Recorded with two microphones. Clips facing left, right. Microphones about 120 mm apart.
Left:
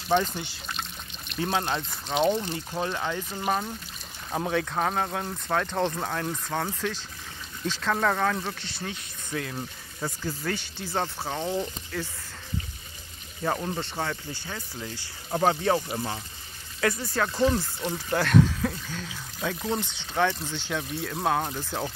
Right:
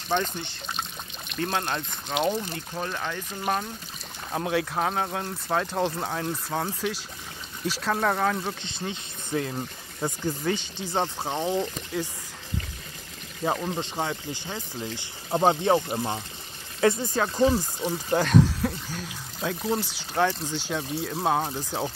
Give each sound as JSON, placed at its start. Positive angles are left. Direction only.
{"t": 0.1, "sound": "speech", "side_deg": 5}
{"t": 2.7, "sound": "speech", "side_deg": 15}
{"t": 4.3, "sound": "speech", "side_deg": 0}
{"t": 13.4, "sound": "speech", "side_deg": -15}
{"t": 16.8, "sound": "speech", "side_deg": -25}